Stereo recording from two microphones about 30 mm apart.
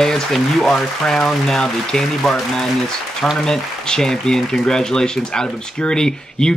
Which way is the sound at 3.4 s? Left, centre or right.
Centre.